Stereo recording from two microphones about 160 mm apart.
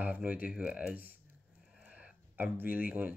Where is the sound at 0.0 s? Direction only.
10° right (ahead or behind).